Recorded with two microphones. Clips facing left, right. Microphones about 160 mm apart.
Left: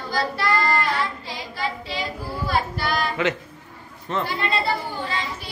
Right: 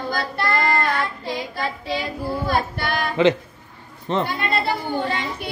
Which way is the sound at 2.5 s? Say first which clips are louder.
Left 1 dB; 55° right (ahead or behind).